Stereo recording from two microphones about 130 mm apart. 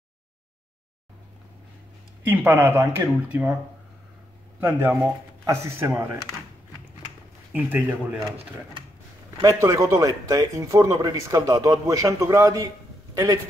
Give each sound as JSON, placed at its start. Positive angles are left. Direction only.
{"t": 2.2, "sound": "speech", "side_deg": -15}
{"t": 4.6, "sound": "speech", "side_deg": -15}
{"t": 7.5, "sound": "speech", "side_deg": -10}
{"t": 9.4, "sound": "speech", "side_deg": -25}